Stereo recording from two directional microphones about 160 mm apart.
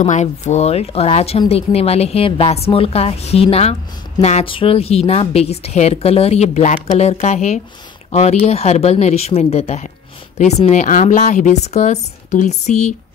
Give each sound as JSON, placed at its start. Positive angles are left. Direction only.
{"t": 0.0, "sound": "a woman's voice", "side_deg": 45}